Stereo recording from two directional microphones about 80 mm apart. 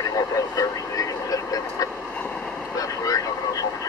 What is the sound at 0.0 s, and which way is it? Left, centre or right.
Vehicle, left.